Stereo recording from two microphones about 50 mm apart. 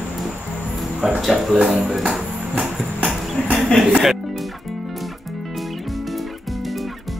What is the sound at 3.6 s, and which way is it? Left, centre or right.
Speech, centre.